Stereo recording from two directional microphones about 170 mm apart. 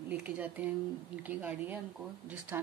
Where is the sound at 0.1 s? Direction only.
10° right (ahead or behind).